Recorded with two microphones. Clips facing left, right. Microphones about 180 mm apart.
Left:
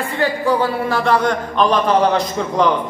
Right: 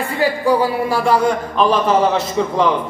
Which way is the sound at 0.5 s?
10° right (ahead or behind).